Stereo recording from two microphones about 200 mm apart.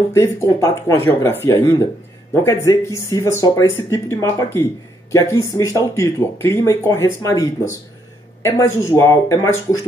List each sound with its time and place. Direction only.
0.1 s speech: 15° left (ahead or behind)